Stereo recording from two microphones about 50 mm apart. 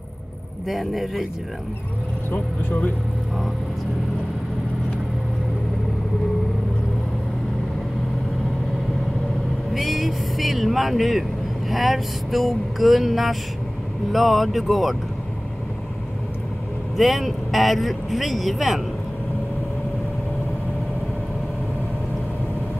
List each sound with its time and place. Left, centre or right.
0.7 s speech: centre
2.3 s speech: left
9.8 s speech: centre
16.9 s speech: centre